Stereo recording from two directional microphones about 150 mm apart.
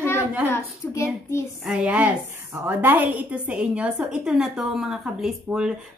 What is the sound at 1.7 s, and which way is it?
A woman's voice, 10° right (ahead or behind).